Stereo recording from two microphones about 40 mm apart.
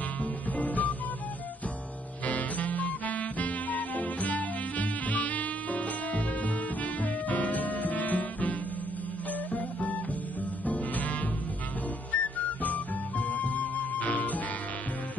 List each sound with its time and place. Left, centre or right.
0.2 s music: left
2.2 s music: left